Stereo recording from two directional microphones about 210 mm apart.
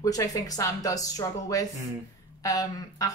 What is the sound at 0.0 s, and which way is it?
Speech, 15° left (ahead or behind).